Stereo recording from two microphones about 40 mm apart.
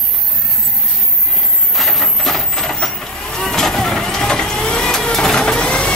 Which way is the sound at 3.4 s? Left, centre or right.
Centre.